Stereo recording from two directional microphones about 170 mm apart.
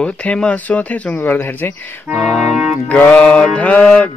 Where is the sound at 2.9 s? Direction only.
10° left (ahead or behind).